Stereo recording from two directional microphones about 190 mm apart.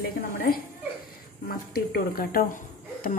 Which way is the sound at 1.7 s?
50° left (ahead or behind).